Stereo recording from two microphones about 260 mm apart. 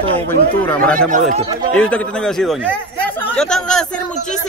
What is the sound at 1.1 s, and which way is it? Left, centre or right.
Speech, right.